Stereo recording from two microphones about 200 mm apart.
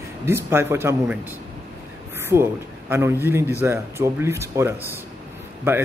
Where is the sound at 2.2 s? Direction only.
10° right (ahead or behind).